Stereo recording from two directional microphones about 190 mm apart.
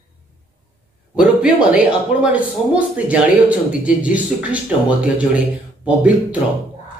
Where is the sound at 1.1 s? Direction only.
5° right (ahead or behind).